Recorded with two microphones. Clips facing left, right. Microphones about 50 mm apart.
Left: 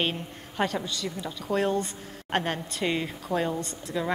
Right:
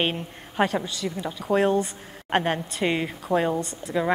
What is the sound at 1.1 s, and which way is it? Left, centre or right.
A woman's voice, centre.